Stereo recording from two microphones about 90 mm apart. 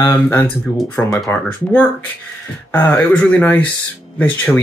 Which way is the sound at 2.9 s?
15° left (ahead or behind).